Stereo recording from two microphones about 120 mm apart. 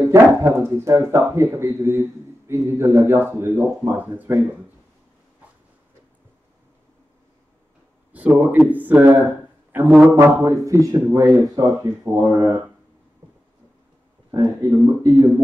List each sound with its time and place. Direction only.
0.1 s speech: 25° right (ahead or behind)
8.1 s speech: 15° right (ahead or behind)
10.1 s speech: 25° right (ahead or behind)
14.3 s speech: 30° right (ahead or behind)